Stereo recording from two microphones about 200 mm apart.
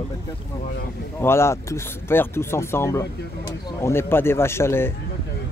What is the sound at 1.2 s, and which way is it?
Speech, 15° left (ahead or behind).